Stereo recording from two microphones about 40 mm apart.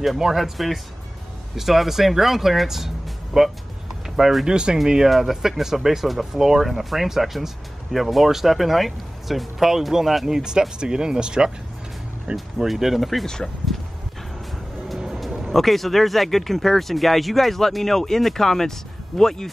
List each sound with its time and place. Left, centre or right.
0.0 s speech: centre
4.5 s speech: centre
5.0 s speech: centre
12.3 s speech: right
12.6 s speech: centre
15.0 s speech: centre